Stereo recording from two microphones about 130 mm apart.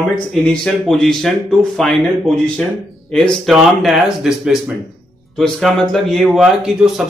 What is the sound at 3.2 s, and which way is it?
Speech, 5° left (ahead or behind).